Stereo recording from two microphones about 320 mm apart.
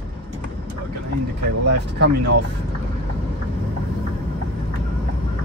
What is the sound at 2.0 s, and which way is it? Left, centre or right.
Speech, right.